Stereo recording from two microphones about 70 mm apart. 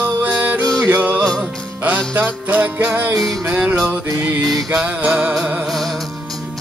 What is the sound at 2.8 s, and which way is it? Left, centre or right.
Music, centre.